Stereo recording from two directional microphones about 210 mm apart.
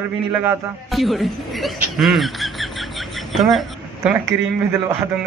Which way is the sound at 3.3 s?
Centre (ahead or behind).